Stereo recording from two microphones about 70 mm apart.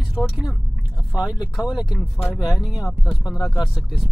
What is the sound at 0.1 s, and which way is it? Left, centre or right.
Speech, centre.